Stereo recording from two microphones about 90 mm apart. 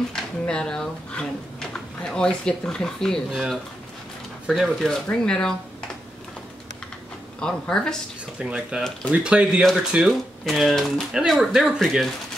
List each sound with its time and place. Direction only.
0.1 s speech: 10° left (ahead or behind)
3.3 s speech: 5° right (ahead or behind); by 5.5 s 10° left (ahead or behind)
7.3 s speech: 10° left (ahead or behind)
8.4 s speech: 10° right (ahead or behind)
10.4 s speech: centre (ahead or behind)